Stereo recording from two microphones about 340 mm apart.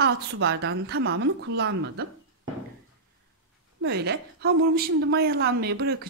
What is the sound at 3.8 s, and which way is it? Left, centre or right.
Speech, right.